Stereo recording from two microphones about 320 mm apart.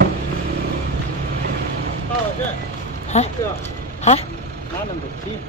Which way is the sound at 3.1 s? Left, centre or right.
Left.